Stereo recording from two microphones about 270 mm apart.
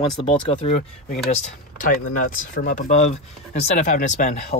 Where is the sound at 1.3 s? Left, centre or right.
Left.